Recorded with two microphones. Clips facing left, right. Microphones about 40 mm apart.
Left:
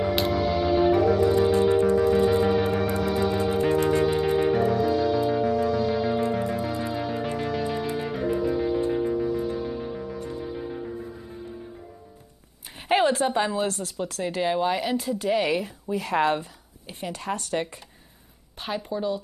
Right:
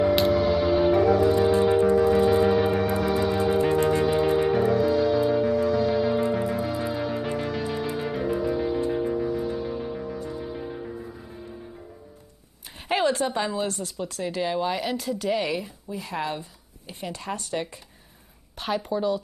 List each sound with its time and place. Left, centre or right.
0.0 s music: centre
12.8 s a sound: centre
13.7 s speech: left
14.2 s speech: left
16.0 s speech: left
17.6 s speech: left
18.6 s speech: centre